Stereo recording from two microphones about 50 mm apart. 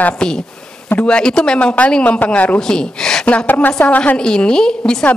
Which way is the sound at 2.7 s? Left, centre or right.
Centre.